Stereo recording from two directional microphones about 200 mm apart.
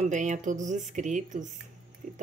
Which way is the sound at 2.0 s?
40° right (ahead or behind).